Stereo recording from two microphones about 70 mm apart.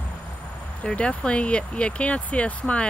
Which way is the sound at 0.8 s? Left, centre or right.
Centre.